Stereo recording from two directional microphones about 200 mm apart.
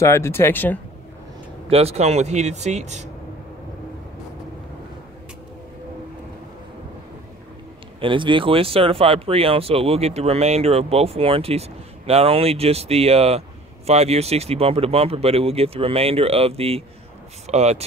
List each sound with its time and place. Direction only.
0.0 s speech: 15° left (ahead or behind)
1.7 s speech: 30° right (ahead or behind)
8.0 s speech: 25° right (ahead or behind)